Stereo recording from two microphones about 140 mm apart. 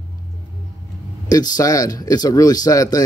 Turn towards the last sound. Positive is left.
turn(degrees=25)  # may be behind; listen again after turning